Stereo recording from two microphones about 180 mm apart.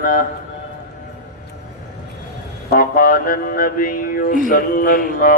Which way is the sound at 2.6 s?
50° left (ahead or behind).